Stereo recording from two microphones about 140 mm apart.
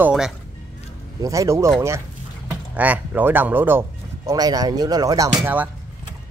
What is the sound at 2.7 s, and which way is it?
Speech, 10° right (ahead or behind).